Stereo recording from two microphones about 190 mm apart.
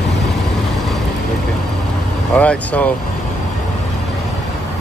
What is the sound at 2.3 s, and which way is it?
Speech, 5° left (ahead or behind).